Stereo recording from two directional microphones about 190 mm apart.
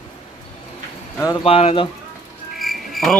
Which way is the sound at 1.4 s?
30° left (ahead or behind).